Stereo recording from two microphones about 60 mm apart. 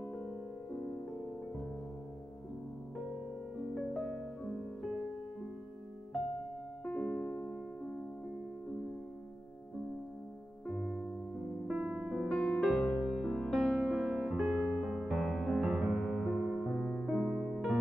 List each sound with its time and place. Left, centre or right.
3.5 s music: centre
3.9 s piano: centre
6.8 s piano: centre
10.7 s music: centre
11.6 s music: centre
12.3 s music: centre